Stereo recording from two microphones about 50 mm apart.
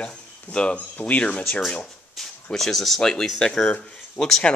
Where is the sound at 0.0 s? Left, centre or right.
Left.